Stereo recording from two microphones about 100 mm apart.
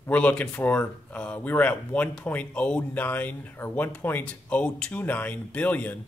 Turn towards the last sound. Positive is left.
turn(degrees=15)  # may be behind; listen again after turning